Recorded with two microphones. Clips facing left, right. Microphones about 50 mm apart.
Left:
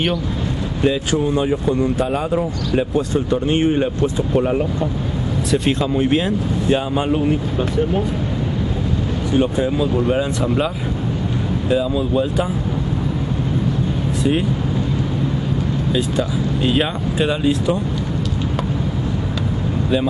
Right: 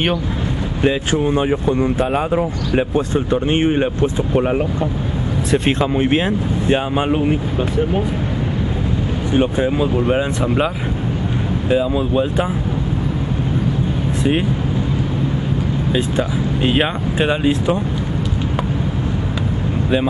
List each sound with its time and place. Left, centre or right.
0.8 s speech: right
9.3 s speech: right
11.7 s speech: right
15.9 s speech: right